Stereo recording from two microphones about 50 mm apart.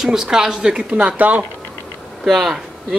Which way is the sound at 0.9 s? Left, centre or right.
Right.